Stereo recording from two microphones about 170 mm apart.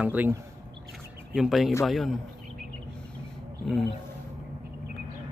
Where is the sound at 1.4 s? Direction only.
Centre (ahead or behind).